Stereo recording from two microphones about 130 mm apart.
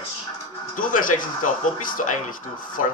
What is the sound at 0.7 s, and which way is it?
Speech, 90° left.